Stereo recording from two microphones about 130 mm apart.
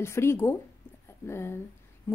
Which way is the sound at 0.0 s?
20° left (ahead or behind).